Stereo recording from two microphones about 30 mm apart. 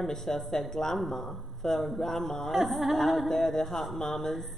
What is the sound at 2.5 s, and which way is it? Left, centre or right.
A man's voice, centre.